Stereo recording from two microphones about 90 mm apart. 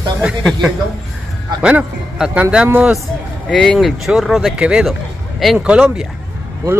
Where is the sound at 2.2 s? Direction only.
10° right (ahead or behind).